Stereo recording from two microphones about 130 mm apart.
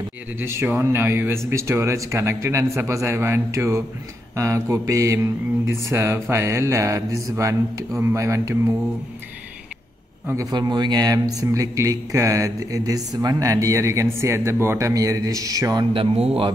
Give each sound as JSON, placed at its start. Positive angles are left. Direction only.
{"t": 0.4, "sound": "a man's voice", "side_deg": -20}
{"t": 10.2, "sound": "a man's voice", "side_deg": -25}